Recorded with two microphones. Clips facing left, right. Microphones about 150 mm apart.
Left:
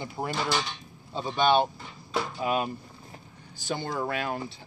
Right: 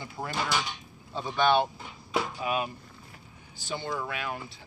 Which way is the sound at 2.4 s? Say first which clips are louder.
Left 3 dB; 35° left (ahead or behind).